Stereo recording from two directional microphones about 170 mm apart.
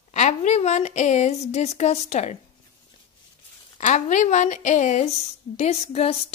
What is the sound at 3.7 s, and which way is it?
A woman's voice, 45° left (ahead or behind).